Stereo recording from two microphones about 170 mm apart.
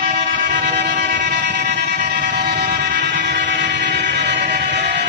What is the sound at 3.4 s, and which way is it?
Train, 90° right.